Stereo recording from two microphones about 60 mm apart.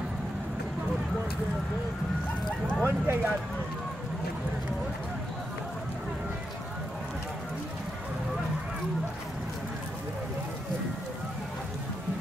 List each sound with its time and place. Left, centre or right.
2.8 s bow-wow: right